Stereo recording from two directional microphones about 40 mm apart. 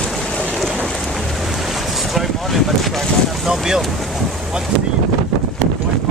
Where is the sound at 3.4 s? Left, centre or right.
Centre.